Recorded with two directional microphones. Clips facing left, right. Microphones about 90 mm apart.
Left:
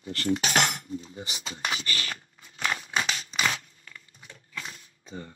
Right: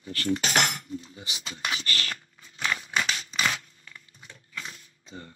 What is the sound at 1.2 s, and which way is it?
Speech, 50° left (ahead or behind).